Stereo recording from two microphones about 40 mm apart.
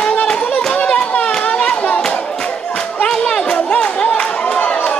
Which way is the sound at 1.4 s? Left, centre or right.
Left.